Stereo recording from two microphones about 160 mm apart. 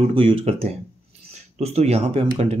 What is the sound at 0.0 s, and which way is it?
Speech, 35° right (ahead or behind).